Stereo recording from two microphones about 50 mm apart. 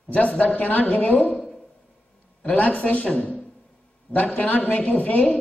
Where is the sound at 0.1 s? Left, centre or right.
Left.